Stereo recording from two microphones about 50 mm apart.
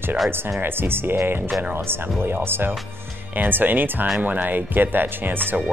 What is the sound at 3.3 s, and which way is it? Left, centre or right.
Speech, right.